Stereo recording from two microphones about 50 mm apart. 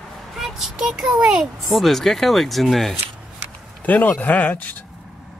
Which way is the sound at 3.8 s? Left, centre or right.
Left.